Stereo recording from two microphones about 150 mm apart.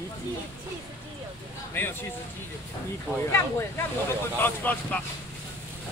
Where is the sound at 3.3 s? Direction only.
15° left (ahead or behind).